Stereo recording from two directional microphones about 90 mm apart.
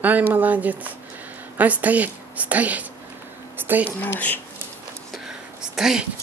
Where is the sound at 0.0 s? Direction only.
20° right (ahead or behind).